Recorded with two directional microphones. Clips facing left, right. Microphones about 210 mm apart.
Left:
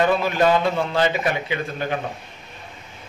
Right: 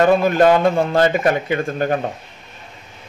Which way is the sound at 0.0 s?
45° right (ahead or behind).